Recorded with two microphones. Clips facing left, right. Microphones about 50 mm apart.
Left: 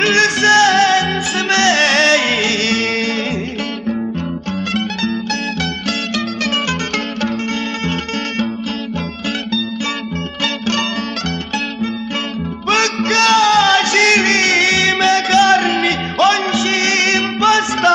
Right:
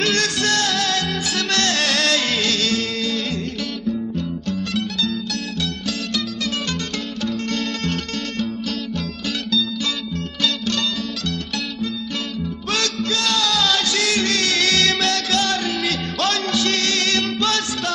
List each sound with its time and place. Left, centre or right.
0.0 s music: left
4.7 s music: left
10.4 s music: left
12.6 s music: left